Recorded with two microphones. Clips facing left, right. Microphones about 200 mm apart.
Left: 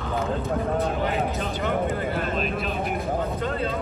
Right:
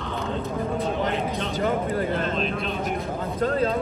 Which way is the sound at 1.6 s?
40° right (ahead or behind).